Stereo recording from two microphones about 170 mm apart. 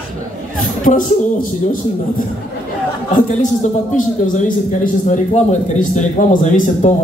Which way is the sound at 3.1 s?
50° left (ahead or behind).